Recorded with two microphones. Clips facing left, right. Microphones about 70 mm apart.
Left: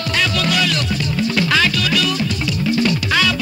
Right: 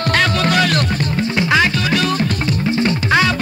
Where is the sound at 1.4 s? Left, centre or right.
Right.